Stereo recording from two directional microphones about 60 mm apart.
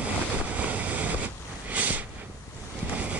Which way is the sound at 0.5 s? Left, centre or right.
Right.